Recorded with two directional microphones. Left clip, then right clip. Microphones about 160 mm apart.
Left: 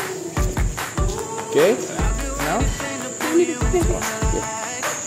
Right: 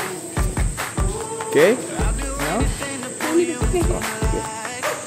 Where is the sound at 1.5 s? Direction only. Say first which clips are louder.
Right 1 dB; 30° right (ahead or behind).